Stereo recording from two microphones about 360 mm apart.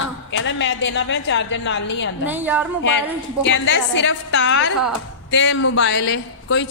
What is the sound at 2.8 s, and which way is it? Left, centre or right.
A woman's voice, left.